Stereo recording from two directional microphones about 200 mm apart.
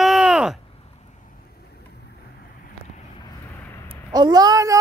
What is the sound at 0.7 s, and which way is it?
Vehicle, 40° left (ahead or behind).